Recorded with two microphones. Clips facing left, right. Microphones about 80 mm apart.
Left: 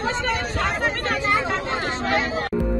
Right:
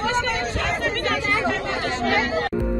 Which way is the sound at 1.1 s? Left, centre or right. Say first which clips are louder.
Left 1 dB; left.